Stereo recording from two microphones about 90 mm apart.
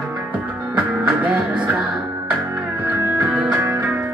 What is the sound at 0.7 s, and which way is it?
Music, 15° right (ahead or behind).